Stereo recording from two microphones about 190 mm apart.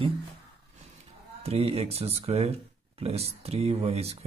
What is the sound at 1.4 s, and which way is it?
Speech, 35° right (ahead or behind).